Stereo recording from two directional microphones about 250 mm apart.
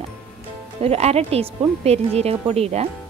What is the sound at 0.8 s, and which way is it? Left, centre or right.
Speech, right.